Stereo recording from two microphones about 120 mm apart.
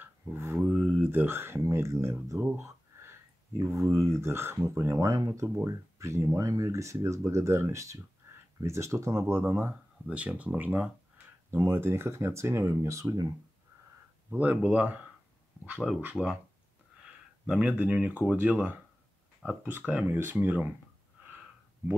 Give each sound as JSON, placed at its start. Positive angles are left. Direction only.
{"t": 0.0, "sound": "speech", "side_deg": -20}
{"t": 8.2, "sound": "a sound", "side_deg": -25}
{"t": 8.5, "sound": "speech", "side_deg": -25}
{"t": 14.3, "sound": "speech", "side_deg": -15}
{"t": 17.5, "sound": "speech", "side_deg": -10}